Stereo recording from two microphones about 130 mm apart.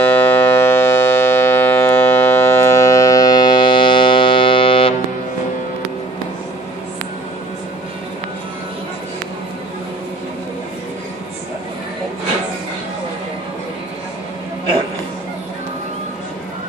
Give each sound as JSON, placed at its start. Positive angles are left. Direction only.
{"t": 0.0, "sound": "civil defense siren", "side_deg": 15}